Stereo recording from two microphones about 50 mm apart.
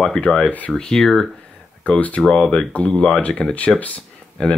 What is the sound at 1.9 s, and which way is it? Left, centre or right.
Speech, left.